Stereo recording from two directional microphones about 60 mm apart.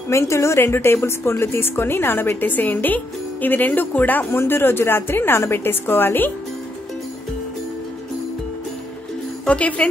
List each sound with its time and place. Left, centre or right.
0.1 s a woman's voice: left
9.5 s speech: left